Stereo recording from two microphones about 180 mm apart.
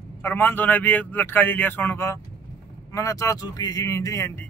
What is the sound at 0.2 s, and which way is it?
A man's voice, 10° left (ahead or behind).